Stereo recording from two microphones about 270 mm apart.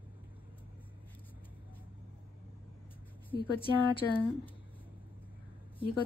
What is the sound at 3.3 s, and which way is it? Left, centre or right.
Speech, centre.